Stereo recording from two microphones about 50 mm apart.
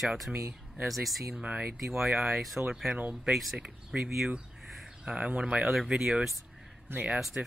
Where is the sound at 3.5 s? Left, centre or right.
Right.